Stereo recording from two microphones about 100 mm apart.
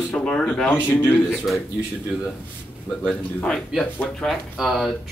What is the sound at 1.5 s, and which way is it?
Speech, centre (ahead or behind).